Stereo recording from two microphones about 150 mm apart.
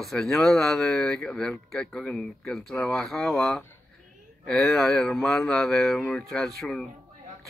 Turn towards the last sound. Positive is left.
turn(degrees=0)  # may be behind; listen again after turning